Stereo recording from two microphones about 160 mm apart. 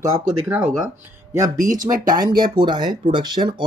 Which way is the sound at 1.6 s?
55° right (ahead or behind).